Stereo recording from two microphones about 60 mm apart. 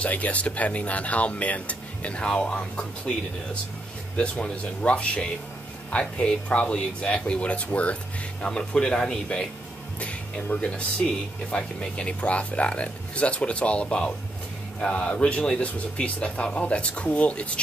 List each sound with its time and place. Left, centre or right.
0.0 s speech: left
4.2 s speech: centre
9.9 s speech: left